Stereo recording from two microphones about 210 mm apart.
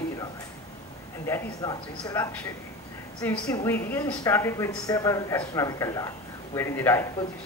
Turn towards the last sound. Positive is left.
turn(degrees=10)  # may be behind; listen again after turning